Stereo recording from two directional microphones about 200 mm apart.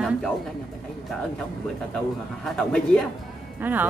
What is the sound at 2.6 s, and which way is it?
Speech, 5° left (ahead or behind).